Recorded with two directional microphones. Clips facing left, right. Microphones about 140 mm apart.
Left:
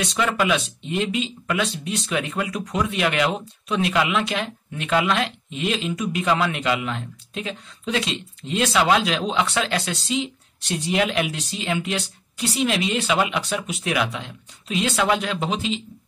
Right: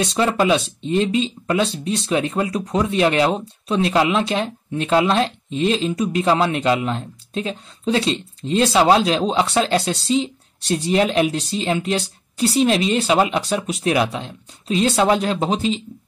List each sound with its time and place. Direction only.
0.0 s speech: 30° right (ahead or behind)